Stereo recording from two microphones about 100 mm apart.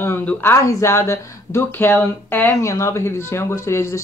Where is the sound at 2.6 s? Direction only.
30° left (ahead or behind).